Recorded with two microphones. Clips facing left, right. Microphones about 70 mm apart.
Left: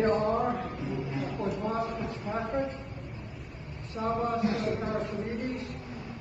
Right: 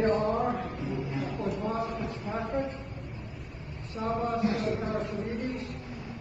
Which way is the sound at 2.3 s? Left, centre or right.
Centre.